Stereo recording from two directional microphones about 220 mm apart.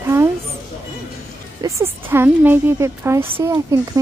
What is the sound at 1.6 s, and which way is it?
A woman's voice, 10° right (ahead or behind).